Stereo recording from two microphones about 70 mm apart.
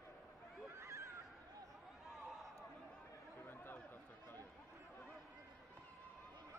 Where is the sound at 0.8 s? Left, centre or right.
Right.